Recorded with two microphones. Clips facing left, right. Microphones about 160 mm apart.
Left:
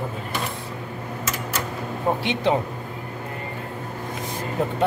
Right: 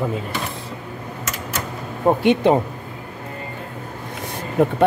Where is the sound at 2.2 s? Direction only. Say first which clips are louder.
Right 9 dB; 50° right (ahead or behind).